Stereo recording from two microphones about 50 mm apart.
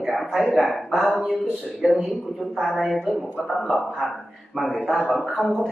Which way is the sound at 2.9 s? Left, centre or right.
Centre.